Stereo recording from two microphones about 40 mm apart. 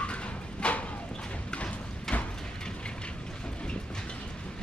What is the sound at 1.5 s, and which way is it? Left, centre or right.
Thump, left.